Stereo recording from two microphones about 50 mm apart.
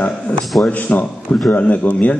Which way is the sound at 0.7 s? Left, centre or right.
Left.